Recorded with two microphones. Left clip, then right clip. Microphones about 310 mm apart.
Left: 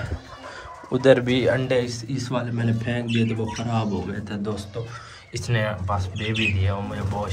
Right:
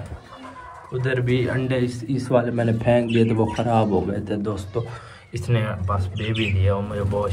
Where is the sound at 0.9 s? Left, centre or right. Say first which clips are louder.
Left 6 dB; centre.